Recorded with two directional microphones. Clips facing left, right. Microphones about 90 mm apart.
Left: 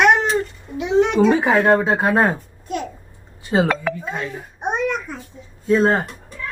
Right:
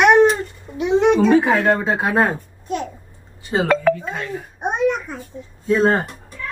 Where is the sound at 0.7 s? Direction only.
30° right (ahead or behind).